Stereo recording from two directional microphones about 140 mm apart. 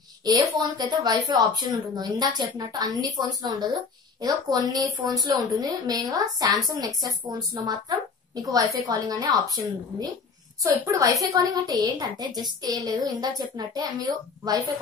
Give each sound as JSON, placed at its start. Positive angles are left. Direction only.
{"t": 0.2, "sound": "a woman's voice", "side_deg": -30}